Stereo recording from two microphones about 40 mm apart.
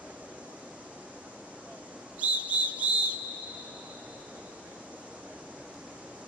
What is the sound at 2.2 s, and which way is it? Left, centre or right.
Whistle, right.